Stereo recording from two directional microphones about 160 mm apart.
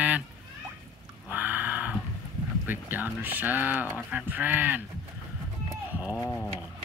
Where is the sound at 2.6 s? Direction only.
10° right (ahead or behind).